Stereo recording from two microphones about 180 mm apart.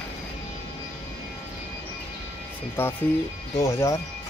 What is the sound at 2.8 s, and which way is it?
Speech, 10° left (ahead or behind).